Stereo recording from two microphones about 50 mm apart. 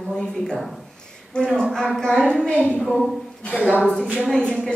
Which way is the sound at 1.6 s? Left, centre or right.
Centre.